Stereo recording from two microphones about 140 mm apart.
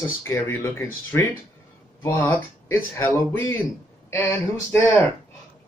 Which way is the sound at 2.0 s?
20° left (ahead or behind).